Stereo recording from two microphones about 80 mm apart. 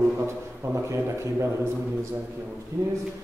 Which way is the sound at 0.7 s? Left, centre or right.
Right.